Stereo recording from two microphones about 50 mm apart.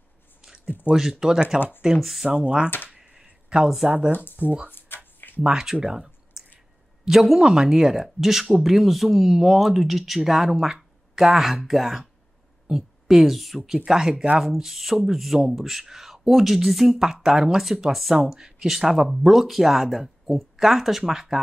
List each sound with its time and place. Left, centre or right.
1.1 s speech: centre
2.2 s speech: centre
3.3 s a sound: centre
4.1 s speech: left
4.6 s a sound: left
5.4 s speech: centre
5.8 s clicking: centre
7.1 s speech: centre
13.7 s speech: centre